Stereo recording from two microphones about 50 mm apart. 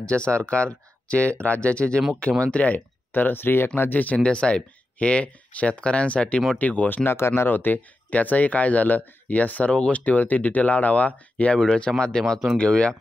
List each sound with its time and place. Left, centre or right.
0.0 s speech: left
2.7 s speech: left
7.1 s speech: left
7.5 s speech: left
11.5 s speech: centre